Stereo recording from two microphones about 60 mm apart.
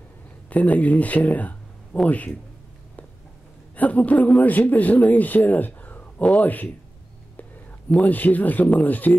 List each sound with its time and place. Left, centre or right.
0.5 s speech: left
3.7 s speech: left
8.0 s speech: left